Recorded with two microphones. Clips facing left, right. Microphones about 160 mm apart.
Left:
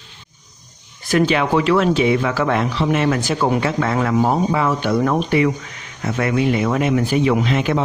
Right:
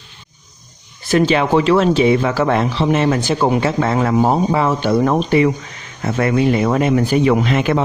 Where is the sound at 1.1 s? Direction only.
30° right (ahead or behind).